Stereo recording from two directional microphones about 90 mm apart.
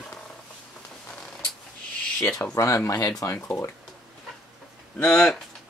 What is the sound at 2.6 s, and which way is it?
Speech, 35° left (ahead or behind).